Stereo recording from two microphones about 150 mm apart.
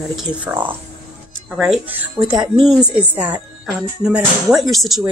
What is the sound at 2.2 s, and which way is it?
Speech, 30° right (ahead or behind).